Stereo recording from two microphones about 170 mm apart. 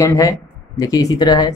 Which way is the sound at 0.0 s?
20° left (ahead or behind).